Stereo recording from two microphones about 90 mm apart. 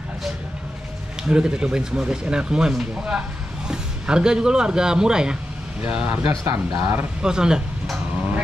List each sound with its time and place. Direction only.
1.3 s a man's voice: 10° right (ahead or behind)
6.4 s speech: 35° right (ahead or behind)
7.2 s speech: 10° right (ahead or behind)